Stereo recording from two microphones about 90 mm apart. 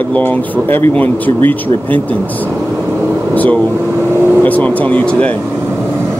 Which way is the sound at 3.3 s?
15° left (ahead or behind).